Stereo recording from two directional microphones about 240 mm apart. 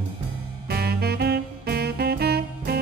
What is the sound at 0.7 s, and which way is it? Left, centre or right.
Music, right.